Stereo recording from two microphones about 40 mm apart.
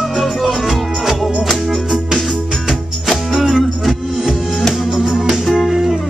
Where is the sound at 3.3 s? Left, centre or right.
Centre.